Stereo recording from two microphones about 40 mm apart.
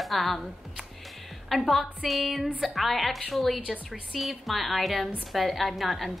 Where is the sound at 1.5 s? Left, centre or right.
Centre.